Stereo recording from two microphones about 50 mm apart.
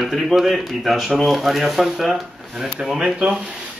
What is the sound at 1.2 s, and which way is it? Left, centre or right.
Speech, centre.